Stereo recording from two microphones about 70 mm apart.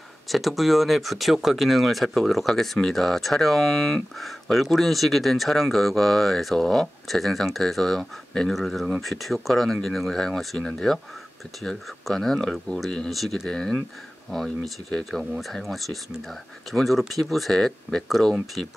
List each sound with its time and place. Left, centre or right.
0.3 s speech: centre
15.0 s speech: centre